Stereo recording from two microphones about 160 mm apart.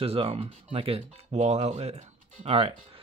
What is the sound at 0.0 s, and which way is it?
Speech, 35° right (ahead or behind).